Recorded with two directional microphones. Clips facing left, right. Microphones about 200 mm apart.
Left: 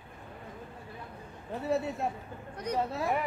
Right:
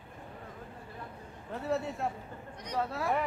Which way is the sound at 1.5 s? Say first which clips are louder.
Left 2 dB; 15° left (ahead or behind).